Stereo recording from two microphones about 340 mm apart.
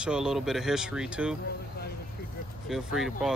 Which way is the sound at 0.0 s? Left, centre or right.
Centre.